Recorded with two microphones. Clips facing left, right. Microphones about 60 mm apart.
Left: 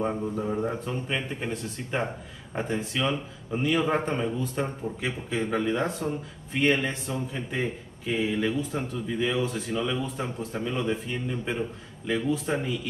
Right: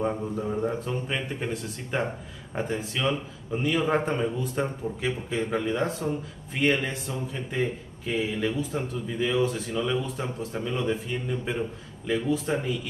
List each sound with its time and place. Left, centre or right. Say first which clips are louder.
0.0 s speech: even; centre
7.3 s a man's voice: right 1 dB; centre
12.1 s speech: right 1 dB; centre